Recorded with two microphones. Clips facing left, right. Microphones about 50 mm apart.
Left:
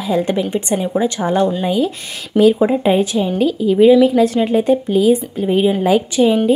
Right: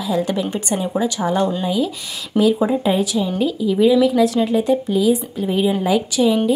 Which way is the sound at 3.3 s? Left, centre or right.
Left.